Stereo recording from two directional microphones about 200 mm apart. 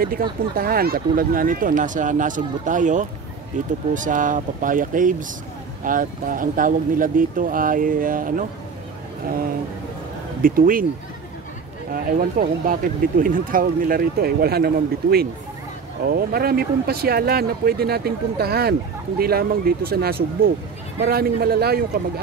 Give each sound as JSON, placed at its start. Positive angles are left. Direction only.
{"t": 0.0, "sound": "speech", "side_deg": -45}
{"t": 10.4, "sound": "speech", "side_deg": -45}
{"t": 11.9, "sound": "speech", "side_deg": -45}